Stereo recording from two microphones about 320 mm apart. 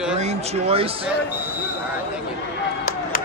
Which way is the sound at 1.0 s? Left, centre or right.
Centre.